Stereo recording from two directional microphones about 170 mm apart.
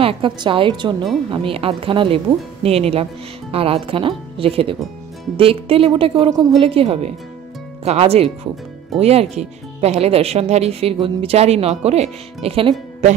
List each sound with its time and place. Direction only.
0.0 s a woman's voice: 30° right (ahead or behind)